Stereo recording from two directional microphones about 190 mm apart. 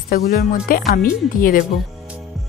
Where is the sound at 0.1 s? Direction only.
50° left (ahead or behind).